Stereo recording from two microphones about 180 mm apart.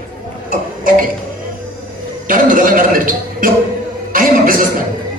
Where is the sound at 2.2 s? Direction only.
50° right (ahead or behind).